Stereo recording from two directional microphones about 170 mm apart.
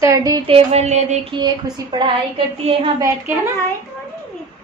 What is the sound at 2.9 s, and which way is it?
Speech, 15° right (ahead or behind).